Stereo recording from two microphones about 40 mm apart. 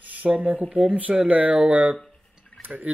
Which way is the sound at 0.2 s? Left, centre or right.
Right.